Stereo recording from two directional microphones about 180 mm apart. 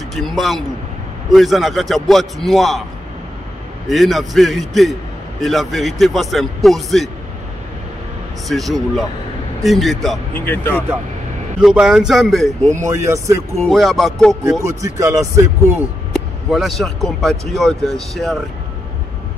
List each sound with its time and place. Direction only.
0.1 s speech: centre (ahead or behind)
3.9 s speech: centre (ahead or behind)
8.5 s speech: centre (ahead or behind)
10.3 s speech: 10° left (ahead or behind)
11.6 s speech: 5° right (ahead or behind)
12.6 s speech: 15° right (ahead or behind)
13.6 s speech: centre (ahead or behind)
14.6 s speech: 15° right (ahead or behind)
16.1 s speech: centre (ahead or behind)